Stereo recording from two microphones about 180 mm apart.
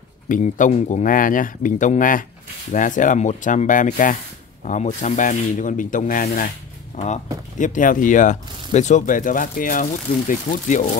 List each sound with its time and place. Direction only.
0.3 s speech: 45° left (ahead or behind)